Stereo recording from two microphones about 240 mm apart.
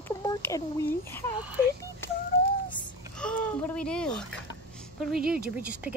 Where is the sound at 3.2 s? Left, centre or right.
Centre.